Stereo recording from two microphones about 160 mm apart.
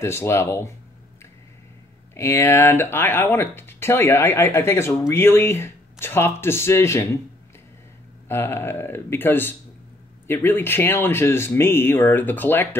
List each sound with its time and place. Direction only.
0.0 s speech: 15° left (ahead or behind)
2.1 s speech: 15° left (ahead or behind)
8.3 s speech: 15° left (ahead or behind)